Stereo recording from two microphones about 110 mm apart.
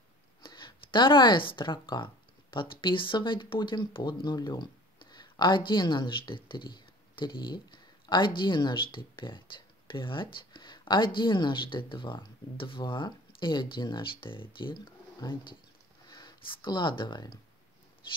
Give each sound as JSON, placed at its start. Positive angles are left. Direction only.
{"t": 0.4, "sound": "speech", "side_deg": 45}